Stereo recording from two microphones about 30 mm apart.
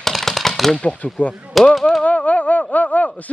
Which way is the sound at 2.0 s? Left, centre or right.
Left.